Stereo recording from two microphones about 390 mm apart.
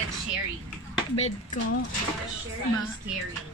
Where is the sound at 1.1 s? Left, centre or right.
Centre.